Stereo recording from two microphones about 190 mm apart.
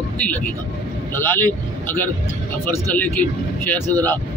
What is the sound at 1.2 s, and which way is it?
Speech, 10° left (ahead or behind).